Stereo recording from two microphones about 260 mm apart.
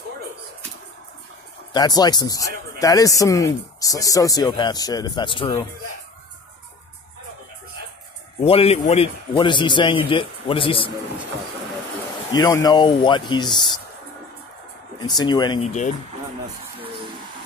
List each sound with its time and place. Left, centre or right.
1.7 s speech: centre
8.4 s a man's voice: left
12.3 s speech: centre
15.0 s speech: centre